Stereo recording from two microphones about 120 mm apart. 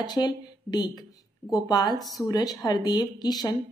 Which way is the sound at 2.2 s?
30° left (ahead or behind).